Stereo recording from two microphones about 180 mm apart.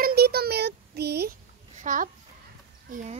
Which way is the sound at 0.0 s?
60° right (ahead or behind).